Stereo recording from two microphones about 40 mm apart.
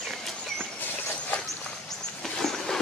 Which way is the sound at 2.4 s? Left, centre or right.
Centre.